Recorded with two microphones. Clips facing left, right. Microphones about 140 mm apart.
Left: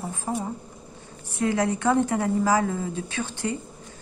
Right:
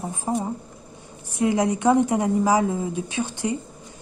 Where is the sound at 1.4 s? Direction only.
15° right (ahead or behind).